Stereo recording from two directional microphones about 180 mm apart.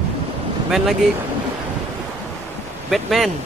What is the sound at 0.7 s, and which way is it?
Speech, 5° right (ahead or behind).